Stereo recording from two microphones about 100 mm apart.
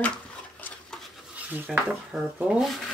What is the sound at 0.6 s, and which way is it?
Stir, 20° left (ahead or behind).